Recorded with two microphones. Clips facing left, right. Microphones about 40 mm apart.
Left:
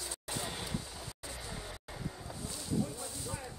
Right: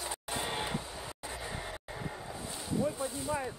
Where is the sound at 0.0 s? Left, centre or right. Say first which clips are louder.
Right 4 dB; right.